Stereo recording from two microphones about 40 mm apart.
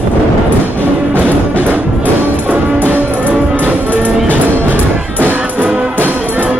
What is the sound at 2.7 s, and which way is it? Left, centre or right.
Music, right.